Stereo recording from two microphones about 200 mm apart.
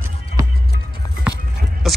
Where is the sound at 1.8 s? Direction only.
Centre (ahead or behind).